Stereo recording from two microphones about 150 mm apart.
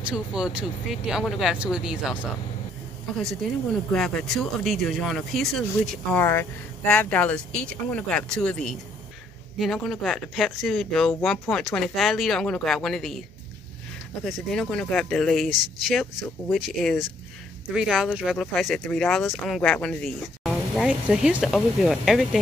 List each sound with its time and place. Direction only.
0.1 s speech: 5° right (ahead or behind)
3.9 s speech: 5° left (ahead or behind)
6.1 s speech: 15° left (ahead or behind)
14.2 s speech: 5° left (ahead or behind)